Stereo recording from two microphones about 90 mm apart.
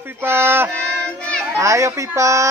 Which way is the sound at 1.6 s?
35° right (ahead or behind).